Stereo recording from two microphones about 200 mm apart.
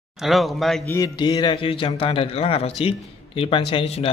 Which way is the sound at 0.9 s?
20° left (ahead or behind).